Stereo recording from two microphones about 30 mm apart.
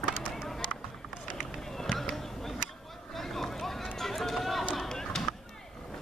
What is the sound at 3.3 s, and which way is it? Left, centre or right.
Run, centre.